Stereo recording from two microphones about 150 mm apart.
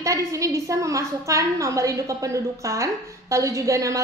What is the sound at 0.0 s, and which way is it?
A woman's voice, 20° right (ahead or behind).